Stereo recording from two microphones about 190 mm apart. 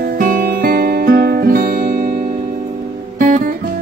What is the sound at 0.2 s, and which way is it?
Music, 50° right (ahead or behind).